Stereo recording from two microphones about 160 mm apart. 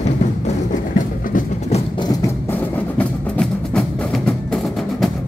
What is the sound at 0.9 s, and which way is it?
Train, 50° left (ahead or behind).